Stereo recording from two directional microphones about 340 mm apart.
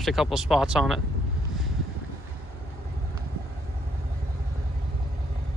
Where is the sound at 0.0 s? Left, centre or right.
Centre.